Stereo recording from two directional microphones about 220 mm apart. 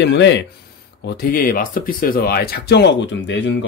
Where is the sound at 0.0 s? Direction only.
50° left (ahead or behind).